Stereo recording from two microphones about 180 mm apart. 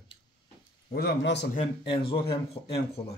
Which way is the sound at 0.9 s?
65° left (ahead or behind).